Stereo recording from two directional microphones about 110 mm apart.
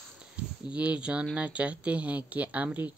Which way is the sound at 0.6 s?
10° right (ahead or behind).